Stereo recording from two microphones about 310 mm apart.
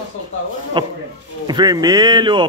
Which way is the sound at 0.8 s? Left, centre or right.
Centre.